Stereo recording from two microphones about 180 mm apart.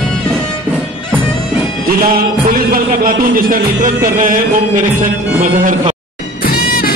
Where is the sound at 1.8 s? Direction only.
50° right (ahead or behind).